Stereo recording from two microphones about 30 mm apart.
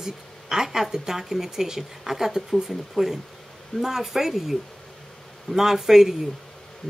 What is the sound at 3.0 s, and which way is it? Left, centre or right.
Speech, centre.